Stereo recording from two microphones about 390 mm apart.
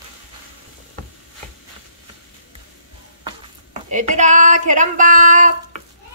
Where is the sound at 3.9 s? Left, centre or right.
Centre.